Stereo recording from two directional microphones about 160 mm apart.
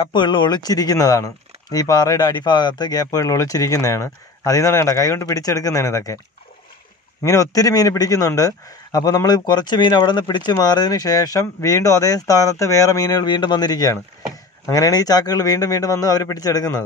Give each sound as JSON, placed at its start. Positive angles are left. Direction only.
{"t": 0.0, "sound": "a man's voice", "side_deg": 30}
{"t": 7.2, "sound": "a man's voice", "side_deg": 20}